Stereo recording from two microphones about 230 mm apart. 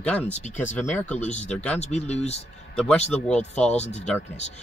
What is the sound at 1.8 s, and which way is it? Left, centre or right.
Speech, left.